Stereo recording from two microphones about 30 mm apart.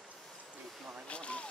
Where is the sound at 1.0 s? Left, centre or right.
Left.